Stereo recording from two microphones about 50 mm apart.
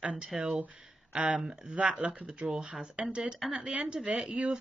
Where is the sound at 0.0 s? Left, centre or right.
Right.